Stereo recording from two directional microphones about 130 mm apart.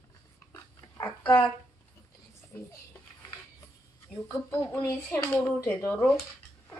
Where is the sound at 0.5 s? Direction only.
25° left (ahead or behind).